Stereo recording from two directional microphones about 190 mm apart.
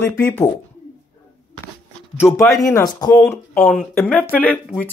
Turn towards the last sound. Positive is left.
turn(degrees=10)  # may be behind; listen again after turning